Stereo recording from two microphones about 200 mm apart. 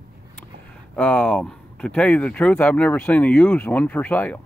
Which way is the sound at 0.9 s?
5° left (ahead or behind).